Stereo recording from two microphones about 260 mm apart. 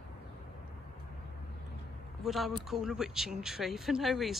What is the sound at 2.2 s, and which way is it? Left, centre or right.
Speech, centre.